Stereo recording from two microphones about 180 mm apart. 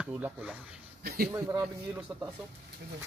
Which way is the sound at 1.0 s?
60° right (ahead or behind).